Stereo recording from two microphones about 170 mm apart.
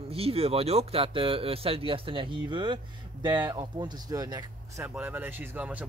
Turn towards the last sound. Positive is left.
turn(degrees=-10)  # may be behind; listen again after turning